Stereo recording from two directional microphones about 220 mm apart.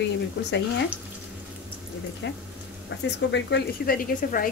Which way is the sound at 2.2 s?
50° left (ahead or behind).